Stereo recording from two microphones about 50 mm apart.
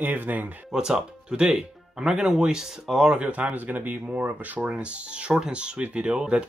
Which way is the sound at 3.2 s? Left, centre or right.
Right.